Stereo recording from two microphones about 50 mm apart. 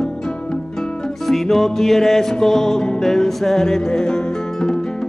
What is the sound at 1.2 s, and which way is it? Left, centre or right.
Music, centre.